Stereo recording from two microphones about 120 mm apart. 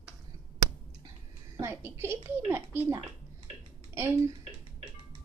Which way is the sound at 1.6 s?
20° right (ahead or behind).